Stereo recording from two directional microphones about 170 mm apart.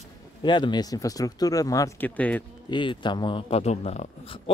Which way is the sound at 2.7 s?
25° left (ahead or behind).